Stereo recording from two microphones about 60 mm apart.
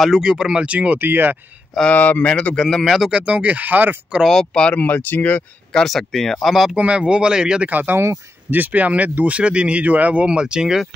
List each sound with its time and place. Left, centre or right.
0.2 s speech: centre; by 1.4 s right
1.9 s speech: left
2.2 s speech: centre
2.6 s speech: centre
3.1 s speech: centre
4.6 s speech: left
5.7 s speech: centre
6.7 s speech: centre
7.7 s speech: right; by 10.9 s centre